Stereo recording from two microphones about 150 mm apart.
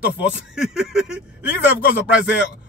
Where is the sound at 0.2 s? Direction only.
5° right (ahead or behind).